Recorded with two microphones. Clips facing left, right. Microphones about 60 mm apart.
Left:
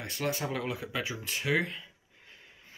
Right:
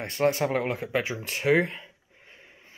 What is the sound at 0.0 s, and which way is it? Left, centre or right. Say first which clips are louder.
Speech: right 9 dB; right.